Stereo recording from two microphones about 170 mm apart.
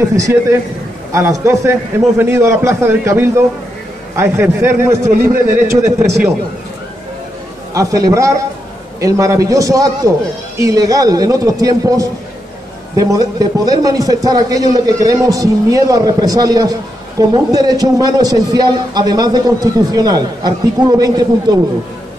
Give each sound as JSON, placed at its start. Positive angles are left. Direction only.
{"t": 0.1, "sound": "a man's voice", "side_deg": -15}
{"t": 5.1, "sound": "speech", "side_deg": -55}
{"t": 7.7, "sound": "a man's voice", "side_deg": -20}